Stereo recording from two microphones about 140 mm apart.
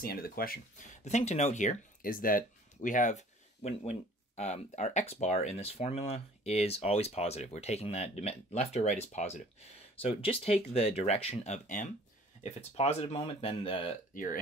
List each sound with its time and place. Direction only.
0.0 s speech: 90° left
1.0 s speech: 55° left (ahead or behind)
12.4 s speech: 50° left (ahead or behind)
14.1 s speech: 75° left (ahead or behind)